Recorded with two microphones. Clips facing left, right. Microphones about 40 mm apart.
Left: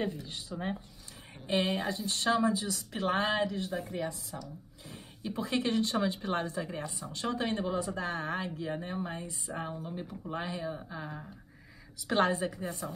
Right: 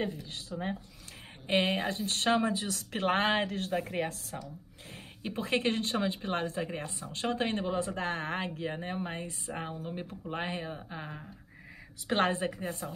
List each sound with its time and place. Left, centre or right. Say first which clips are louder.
0.0 s speech: even; centre
1.5 s speech: right 2 dB; right
4.4 s speech: right 1 dB; right